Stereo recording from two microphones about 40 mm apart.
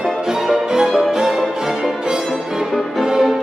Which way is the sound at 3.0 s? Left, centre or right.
Centre.